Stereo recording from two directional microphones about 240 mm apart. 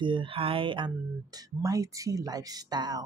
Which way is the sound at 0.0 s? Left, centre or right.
Right.